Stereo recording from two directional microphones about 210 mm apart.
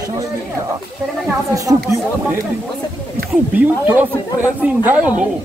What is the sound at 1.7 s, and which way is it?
Speech, 15° right (ahead or behind).